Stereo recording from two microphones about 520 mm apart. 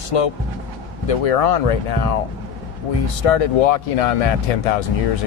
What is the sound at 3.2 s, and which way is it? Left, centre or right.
Speech, left.